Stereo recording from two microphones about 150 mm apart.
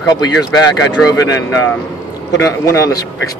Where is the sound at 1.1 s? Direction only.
20° left (ahead or behind).